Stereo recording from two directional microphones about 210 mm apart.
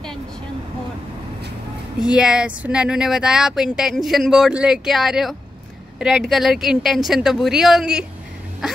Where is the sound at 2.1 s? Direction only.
5° right (ahead or behind).